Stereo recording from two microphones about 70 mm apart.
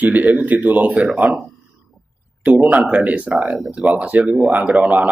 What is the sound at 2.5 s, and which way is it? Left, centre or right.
Speech, centre.